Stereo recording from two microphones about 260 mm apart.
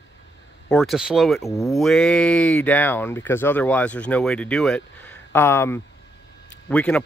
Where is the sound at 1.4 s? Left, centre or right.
Centre.